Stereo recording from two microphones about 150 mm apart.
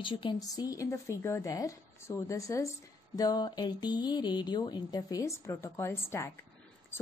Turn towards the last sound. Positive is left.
turn(degrees=15)  # may be behind; listen again after turning